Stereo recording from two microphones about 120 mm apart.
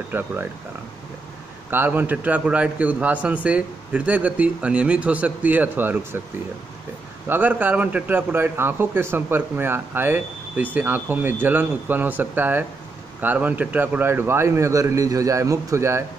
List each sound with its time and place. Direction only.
0.1 s a man's voice: 15° right (ahead or behind)
1.7 s a man's voice: 15° right (ahead or behind)
7.2 s a man's voice: 15° right (ahead or behind)